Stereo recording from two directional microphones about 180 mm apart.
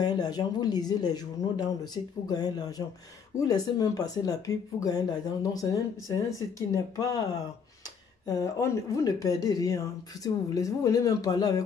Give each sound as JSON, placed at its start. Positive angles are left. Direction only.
{"t": 0.0, "sound": "speech", "side_deg": 20}
{"t": 8.3, "sound": "speech", "side_deg": 20}